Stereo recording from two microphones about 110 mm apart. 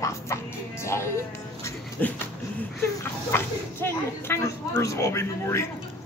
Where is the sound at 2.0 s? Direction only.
15° left (ahead or behind).